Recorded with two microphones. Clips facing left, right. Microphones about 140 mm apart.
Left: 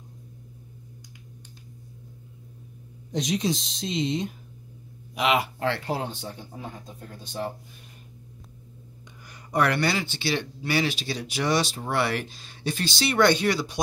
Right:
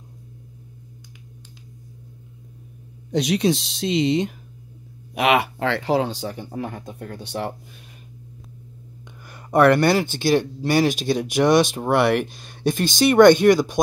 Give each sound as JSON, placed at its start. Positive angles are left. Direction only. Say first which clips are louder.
{"t": 3.1, "sound": "speech", "louder": "right 6 dB", "side_deg": -70}
{"t": 5.1, "sound": "speech", "louder": "right 5 dB", "side_deg": -65}
{"t": 9.3, "sound": "speech", "louder": "right 9 dB", "side_deg": -55}